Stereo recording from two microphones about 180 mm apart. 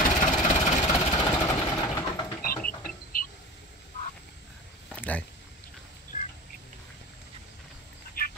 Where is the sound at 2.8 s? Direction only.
50° left (ahead or behind).